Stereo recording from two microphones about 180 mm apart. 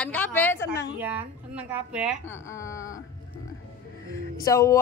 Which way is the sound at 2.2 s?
15° left (ahead or behind).